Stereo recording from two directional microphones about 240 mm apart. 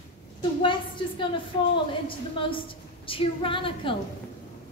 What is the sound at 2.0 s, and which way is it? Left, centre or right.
A woman's voice, left.